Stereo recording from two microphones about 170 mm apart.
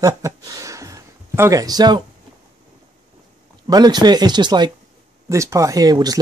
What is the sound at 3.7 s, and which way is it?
Speech, 25° right (ahead or behind).